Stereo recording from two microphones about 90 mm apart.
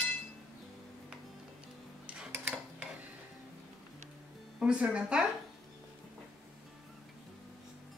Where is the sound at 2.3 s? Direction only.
20° right (ahead or behind).